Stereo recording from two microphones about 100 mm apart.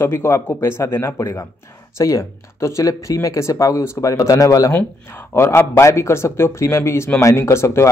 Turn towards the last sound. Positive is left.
turn(degrees=30)  # may be behind; listen again after turning